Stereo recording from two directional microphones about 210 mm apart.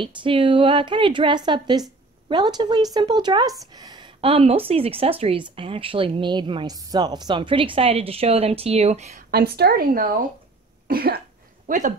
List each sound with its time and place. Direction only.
0.0 s a woman's voice: 25° right (ahead or behind)
9.1 s a woman's voice: 50° right (ahead or behind)
10.9 s cough: 45° right (ahead or behind)
11.6 s speech: 35° right (ahead or behind)